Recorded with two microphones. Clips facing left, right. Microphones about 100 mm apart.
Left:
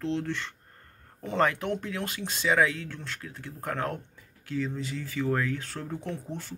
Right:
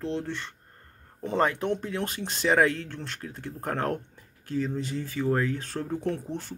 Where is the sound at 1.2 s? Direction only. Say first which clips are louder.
Right 1 dB; 30° right (ahead or behind).